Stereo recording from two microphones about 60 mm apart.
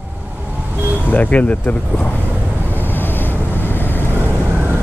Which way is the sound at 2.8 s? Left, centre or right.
Left.